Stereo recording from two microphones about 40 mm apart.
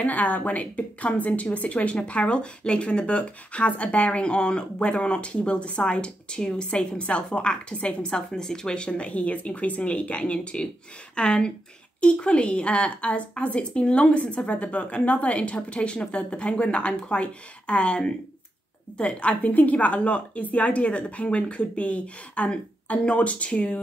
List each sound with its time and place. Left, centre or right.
0.0 s a woman's voice: left
8.3 s a woman's voice: centre